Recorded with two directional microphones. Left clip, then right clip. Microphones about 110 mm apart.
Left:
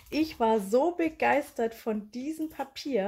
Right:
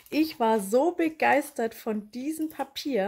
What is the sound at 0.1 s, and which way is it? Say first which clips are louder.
Speech: right 2 dB; 35° right (ahead or behind).